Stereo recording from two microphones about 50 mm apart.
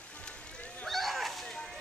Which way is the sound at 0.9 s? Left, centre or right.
Centre.